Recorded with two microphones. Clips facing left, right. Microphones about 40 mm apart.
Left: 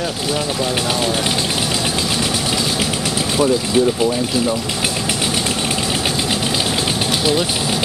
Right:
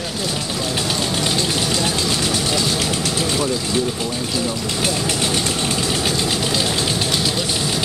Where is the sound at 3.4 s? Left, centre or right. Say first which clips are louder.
Left 5 dB; centre.